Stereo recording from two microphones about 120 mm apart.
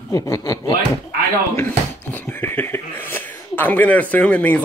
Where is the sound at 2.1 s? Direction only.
15° left (ahead or behind).